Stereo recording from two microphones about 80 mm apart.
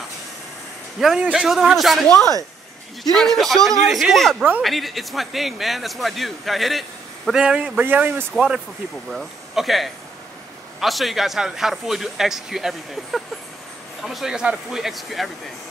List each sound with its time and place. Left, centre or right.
0.9 s a man's voice: centre
2.0 s a man's voice: centre
9.1 s a man's voice: centre